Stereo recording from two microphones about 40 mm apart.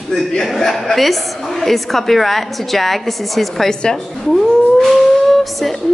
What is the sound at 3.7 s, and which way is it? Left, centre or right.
Speech, centre.